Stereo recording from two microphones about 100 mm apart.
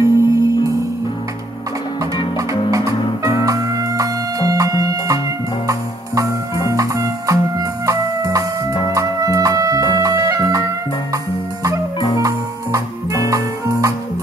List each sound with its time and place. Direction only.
0.0 s music: 30° right (ahead or behind)
2.7 s music: 35° right (ahead or behind)
12.2 s music: 35° right (ahead or behind)